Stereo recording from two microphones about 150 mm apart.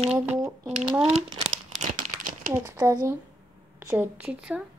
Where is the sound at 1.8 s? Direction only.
60° right (ahead or behind).